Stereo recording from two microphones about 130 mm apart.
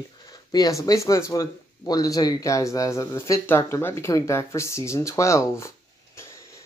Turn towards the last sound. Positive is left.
turn(degrees=25)  # may be behind; listen again after turning